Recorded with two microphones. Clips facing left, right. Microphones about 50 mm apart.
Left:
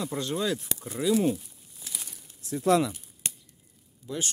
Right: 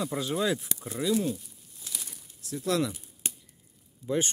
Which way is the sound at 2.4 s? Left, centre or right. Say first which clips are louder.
Left 6 dB; left.